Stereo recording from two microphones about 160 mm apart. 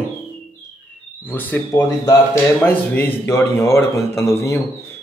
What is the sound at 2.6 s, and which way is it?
A man's voice, 10° left (ahead or behind).